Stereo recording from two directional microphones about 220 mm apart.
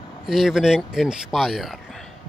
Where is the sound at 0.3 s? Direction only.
Centre (ahead or behind).